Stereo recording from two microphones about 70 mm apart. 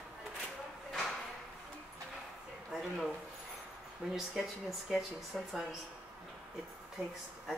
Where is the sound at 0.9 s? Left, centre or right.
Centre.